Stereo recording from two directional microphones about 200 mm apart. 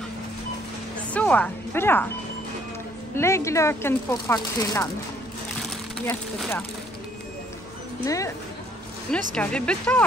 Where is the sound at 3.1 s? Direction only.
15° left (ahead or behind).